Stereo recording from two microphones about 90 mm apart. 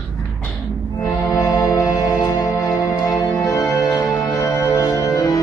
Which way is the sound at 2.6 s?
45° left (ahead or behind).